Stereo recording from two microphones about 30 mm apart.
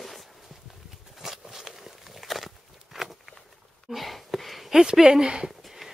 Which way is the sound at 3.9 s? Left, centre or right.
Centre.